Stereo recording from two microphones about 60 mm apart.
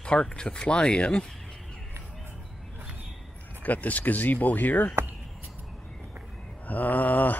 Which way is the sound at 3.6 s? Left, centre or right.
Left.